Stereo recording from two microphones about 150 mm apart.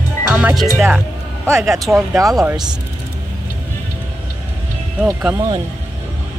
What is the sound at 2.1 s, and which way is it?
Speech, 20° right (ahead or behind).